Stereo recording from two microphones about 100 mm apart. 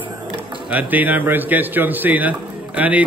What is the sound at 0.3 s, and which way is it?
Speech, 15° right (ahead or behind).